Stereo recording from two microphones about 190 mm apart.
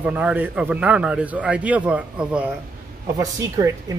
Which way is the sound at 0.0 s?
5° right (ahead or behind).